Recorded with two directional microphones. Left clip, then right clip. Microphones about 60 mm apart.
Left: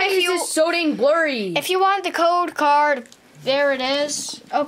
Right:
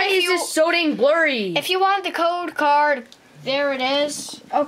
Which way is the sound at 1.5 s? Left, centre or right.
Left.